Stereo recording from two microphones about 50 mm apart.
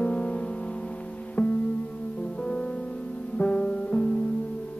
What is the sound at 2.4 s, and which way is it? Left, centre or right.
Music, left.